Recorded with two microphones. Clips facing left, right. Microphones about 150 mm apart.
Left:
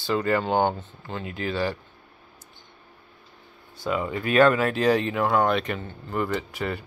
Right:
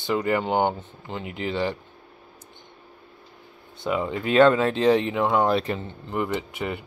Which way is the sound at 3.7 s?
20° right (ahead or behind).